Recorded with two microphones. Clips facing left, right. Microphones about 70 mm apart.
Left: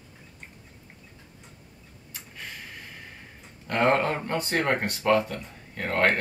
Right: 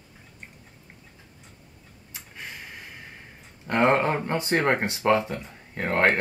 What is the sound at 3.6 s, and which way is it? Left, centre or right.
Speech, centre.